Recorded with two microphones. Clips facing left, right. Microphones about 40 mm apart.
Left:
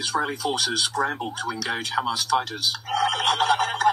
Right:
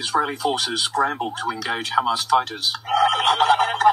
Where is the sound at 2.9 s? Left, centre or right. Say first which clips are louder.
Right 5 dB; centre.